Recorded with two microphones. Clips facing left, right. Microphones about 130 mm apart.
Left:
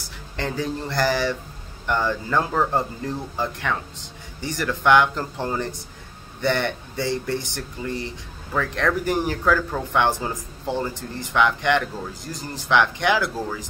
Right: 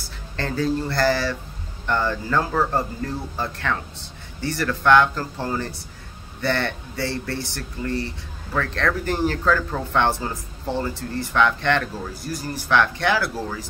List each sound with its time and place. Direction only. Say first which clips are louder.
0.4 s speech: right 3 dB; 15° left (ahead or behind)